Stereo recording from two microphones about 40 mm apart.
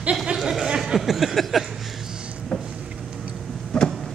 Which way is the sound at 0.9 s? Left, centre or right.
Centre.